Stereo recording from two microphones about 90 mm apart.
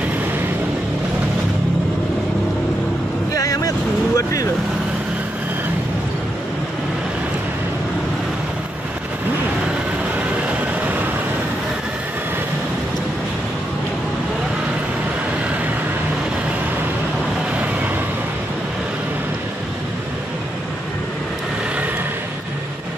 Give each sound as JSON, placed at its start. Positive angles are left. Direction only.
{"t": 3.3, "sound": "vehicle", "side_deg": 40}